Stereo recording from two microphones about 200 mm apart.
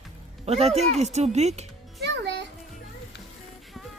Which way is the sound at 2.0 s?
60° right (ahead or behind).